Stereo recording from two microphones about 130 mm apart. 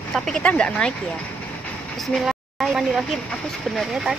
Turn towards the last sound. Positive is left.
turn(degrees=-5)  # may be behind; listen again after turning